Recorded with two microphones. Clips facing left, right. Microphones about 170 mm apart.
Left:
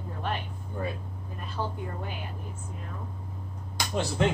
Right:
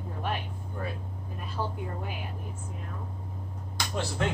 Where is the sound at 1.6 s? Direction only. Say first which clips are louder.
Even; 5° right (ahead or behind).